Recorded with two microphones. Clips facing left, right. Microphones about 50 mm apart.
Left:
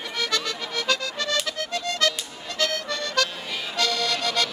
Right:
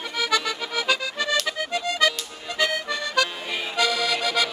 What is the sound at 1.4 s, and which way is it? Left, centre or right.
Music, centre.